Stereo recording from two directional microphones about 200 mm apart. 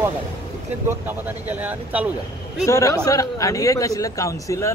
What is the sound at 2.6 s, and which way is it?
Speech, 15° left (ahead or behind).